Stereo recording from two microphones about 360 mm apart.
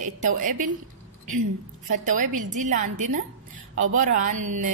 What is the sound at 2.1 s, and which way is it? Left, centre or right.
A woman's voice, right.